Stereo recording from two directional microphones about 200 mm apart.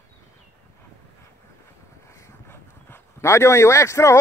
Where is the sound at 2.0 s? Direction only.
15° left (ahead or behind).